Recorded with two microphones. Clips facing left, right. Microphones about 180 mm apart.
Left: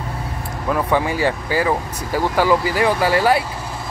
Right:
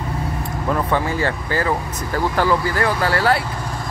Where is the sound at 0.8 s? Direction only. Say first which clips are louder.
Left 2 dB; 15° left (ahead or behind).